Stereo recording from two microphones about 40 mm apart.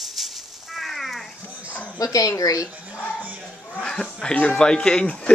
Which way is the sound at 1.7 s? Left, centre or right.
Left.